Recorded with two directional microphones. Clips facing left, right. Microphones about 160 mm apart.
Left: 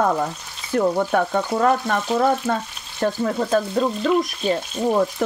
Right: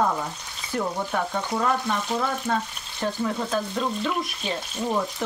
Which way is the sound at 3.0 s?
55° left (ahead or behind).